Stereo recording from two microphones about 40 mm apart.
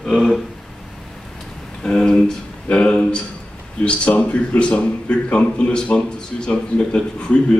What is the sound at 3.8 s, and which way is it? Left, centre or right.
A man's voice, left.